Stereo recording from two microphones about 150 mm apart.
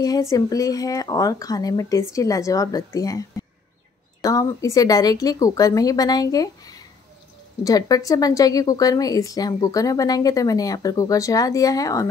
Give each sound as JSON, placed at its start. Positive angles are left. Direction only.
{"t": 0.0, "sound": "a woman's voice", "side_deg": 25}